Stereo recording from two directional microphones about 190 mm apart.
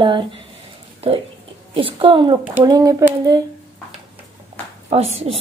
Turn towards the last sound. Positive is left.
turn(degrees=-35)  # may be behind; listen again after turning